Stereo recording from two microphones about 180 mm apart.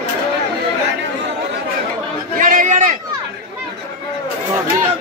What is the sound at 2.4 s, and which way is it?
Chatter, 50° right (ahead or behind).